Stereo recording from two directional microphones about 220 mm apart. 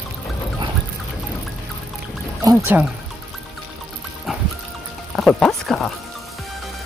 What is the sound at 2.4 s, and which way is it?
Speech, 10° right (ahead or behind).